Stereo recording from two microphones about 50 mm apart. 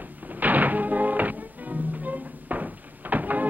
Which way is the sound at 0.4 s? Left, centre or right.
Right.